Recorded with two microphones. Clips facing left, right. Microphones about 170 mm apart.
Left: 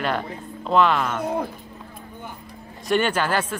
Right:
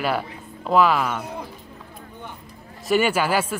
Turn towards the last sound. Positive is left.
turn(degrees=-10)  # may be behind; listen again after turning